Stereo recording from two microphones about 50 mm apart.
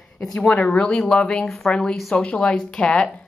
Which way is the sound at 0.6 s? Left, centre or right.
Centre.